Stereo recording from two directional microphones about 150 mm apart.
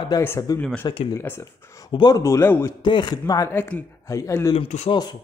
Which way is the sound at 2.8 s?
30° left (ahead or behind).